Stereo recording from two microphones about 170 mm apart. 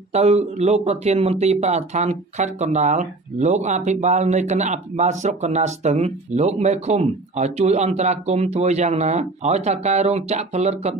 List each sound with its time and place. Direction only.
0.1 s speech: 40° right (ahead or behind)